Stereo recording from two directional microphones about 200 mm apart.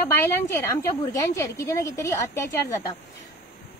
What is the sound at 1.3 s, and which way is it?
A woman's voice, 15° left (ahead or behind).